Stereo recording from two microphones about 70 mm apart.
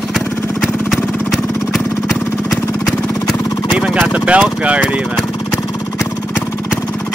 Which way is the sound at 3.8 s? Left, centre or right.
Centre.